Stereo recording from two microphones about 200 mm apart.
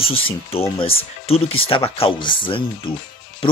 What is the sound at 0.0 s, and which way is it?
Speech, 30° left (ahead or behind).